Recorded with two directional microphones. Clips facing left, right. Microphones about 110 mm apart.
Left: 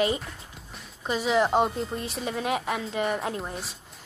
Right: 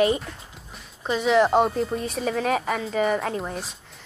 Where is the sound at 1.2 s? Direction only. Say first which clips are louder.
Right 4 dB; centre (ahead or behind).